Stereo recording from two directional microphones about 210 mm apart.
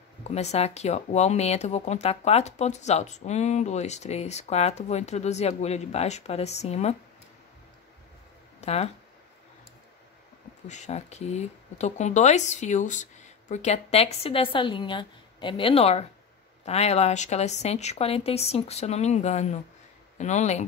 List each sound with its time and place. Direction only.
0.2 s speech: 30° left (ahead or behind)
8.5 s speech: 30° left (ahead or behind)
10.7 s speech: 35° left (ahead or behind)